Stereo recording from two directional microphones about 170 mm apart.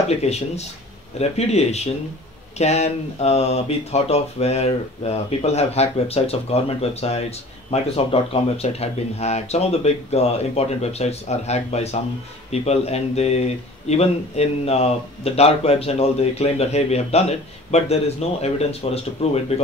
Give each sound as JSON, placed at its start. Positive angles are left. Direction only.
{"t": 0.1, "sound": "speech", "side_deg": 40}